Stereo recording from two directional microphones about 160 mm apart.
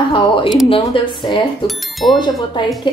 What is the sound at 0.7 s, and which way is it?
Speech, 30° left (ahead or behind).